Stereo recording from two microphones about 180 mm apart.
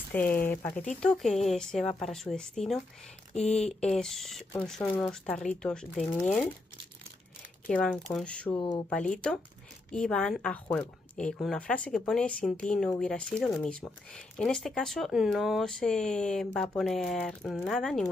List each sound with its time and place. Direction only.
0.1 s speech: 10° left (ahead or behind)
3.3 s speech: 35° left (ahead or behind)
3.6 s speech: 5° left (ahead or behind)
7.7 s speech: 5° left (ahead or behind)
8.5 s speech: 20° left (ahead or behind)
8.9 s speech: 5° left (ahead or behind)